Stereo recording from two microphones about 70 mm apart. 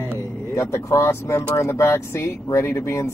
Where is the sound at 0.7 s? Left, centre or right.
Left.